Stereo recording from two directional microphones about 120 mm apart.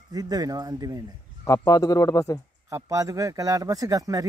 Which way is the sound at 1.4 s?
25° left (ahead or behind).